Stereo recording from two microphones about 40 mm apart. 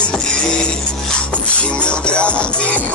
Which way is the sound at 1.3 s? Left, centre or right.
Left.